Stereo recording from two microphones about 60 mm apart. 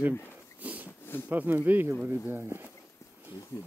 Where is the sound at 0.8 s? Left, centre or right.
Left.